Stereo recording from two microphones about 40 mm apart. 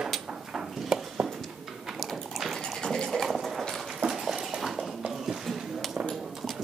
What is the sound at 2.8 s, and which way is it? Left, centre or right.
Water, centre.